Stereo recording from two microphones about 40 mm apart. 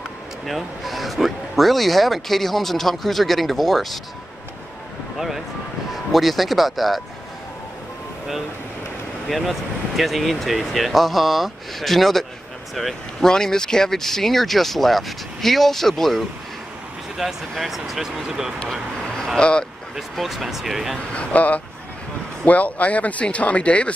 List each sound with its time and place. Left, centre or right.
0.5 s speech: centre
6.1 s speech: centre
9.3 s speech: centre
13.2 s speech: centre
17.2 s speech: centre
19.3 s speech: left
20.0 s speech: centre
21.1 s speech: left